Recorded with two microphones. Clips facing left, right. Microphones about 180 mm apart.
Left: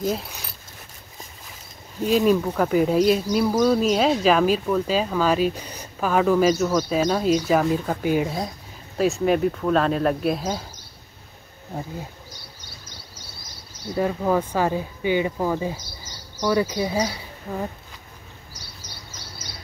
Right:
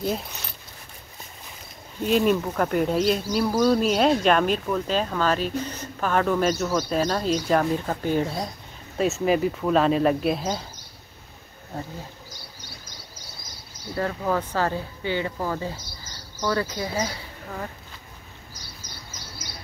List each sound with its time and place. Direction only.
2.0 s speech: centre (ahead or behind)
8.9 s speech: centre (ahead or behind)
13.9 s speech: 15° left (ahead or behind)